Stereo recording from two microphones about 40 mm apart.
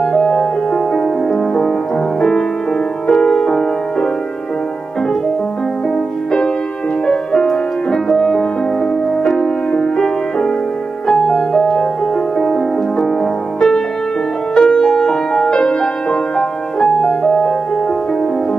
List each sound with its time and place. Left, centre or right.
0.0 s music: centre
3.1 s music: centre
7.1 s music: centre